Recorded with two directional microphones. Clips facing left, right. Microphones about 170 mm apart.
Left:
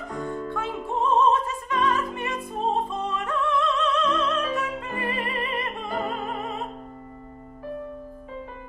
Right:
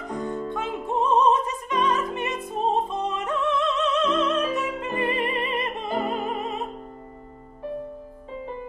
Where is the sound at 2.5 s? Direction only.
20° right (ahead or behind).